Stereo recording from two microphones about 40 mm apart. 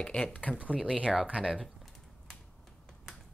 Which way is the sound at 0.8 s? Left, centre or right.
Right.